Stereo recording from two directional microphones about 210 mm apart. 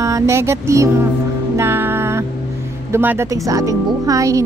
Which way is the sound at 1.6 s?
10° right (ahead or behind).